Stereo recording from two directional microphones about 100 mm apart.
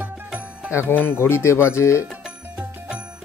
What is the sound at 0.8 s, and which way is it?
Speech, 20° left (ahead or behind).